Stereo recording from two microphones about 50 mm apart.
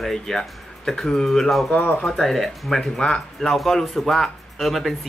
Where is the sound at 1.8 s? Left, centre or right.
Left.